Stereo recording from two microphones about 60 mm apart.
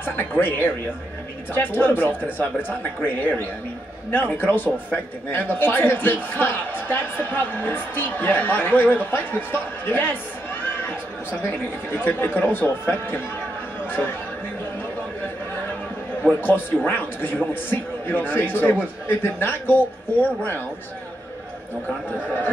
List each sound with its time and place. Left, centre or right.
0.0 s a man's voice: left
13.8 s chatter: left
16.2 s a man's voice: left